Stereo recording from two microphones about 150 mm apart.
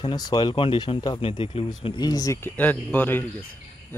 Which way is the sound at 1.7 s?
25° left (ahead or behind).